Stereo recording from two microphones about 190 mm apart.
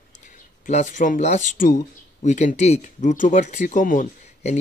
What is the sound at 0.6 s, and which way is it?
Speech, 40° left (ahead or behind).